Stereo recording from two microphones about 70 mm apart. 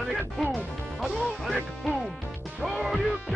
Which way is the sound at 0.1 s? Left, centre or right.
Centre.